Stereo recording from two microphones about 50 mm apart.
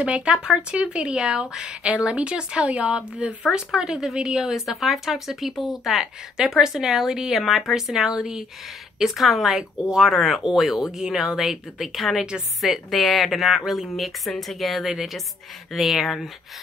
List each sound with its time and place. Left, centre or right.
0.0 s speech: right; by 16.3 s centre